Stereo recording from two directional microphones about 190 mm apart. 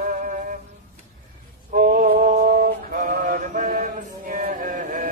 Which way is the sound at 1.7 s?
45° right (ahead or behind).